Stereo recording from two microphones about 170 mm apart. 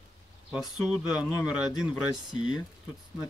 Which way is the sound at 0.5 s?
Centre (ahead or behind).